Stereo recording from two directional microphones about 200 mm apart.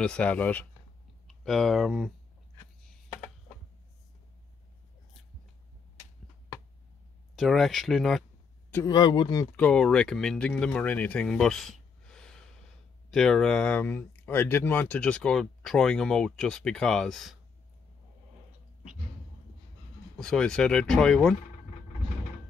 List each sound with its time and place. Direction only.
0.0 s speech: 5° left (ahead or behind)
7.3 s speech: centre (ahead or behind)
8.7 s speech: 20° left (ahead or behind)
9.6 s speech: 5° left (ahead or behind)
20.2 s speech: 5° left (ahead or behind)